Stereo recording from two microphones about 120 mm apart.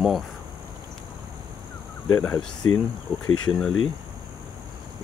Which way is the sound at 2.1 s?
25° left (ahead or behind).